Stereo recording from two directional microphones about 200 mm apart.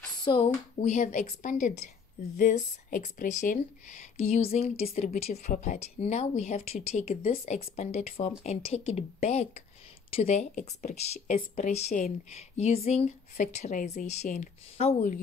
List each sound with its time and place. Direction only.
0.2 s speech: 25° left (ahead or behind)